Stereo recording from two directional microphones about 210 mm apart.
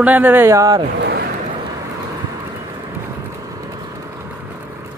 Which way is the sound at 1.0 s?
45° right (ahead or behind).